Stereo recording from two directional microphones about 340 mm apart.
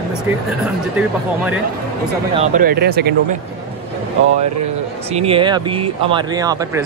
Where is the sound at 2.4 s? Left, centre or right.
Right.